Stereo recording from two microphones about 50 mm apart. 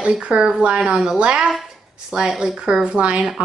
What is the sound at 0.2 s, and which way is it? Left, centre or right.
A woman's voice, right.